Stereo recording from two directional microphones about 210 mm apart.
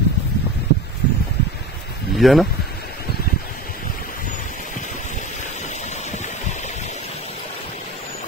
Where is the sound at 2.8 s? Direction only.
45° left (ahead or behind).